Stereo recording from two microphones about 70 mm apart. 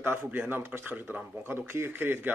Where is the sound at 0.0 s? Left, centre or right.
Right.